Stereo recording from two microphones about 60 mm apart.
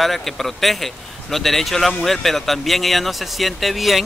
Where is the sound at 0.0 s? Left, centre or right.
Centre.